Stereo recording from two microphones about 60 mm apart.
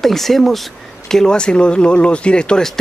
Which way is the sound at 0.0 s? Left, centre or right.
Centre.